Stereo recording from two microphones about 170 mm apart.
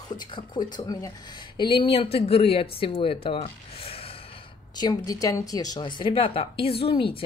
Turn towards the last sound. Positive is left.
turn(degrees=30)  # may be behind; listen again after turning